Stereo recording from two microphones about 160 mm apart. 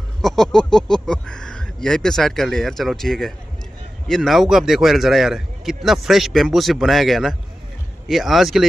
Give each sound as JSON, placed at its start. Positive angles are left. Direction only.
{"t": 0.2, "sound": "a man's voice", "side_deg": 0}